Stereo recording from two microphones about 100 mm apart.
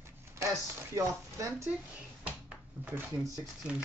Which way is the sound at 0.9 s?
30° right (ahead or behind).